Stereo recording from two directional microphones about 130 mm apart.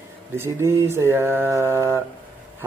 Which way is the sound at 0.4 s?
20° right (ahead or behind).